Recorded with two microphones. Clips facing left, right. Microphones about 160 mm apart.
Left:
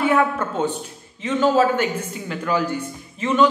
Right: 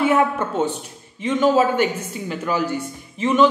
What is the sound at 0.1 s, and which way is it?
A man's voice, 10° right (ahead or behind).